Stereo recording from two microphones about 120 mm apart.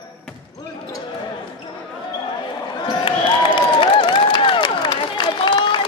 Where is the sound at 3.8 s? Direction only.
45° left (ahead or behind).